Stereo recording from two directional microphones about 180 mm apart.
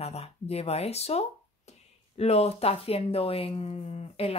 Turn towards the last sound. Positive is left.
turn(degrees=35)  # may be behind; listen again after turning